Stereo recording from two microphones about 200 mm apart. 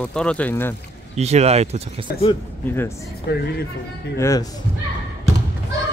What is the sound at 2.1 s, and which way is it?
Speech, 50° left (ahead or behind).